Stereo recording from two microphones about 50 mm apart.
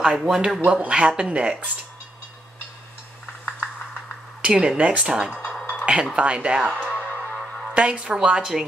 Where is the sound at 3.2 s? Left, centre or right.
Left.